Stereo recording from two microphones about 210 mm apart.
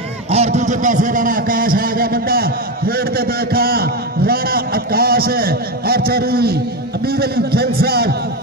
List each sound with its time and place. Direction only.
0.3 s a man's voice: 30° right (ahead or behind); by 8.2 s 50° right (ahead or behind)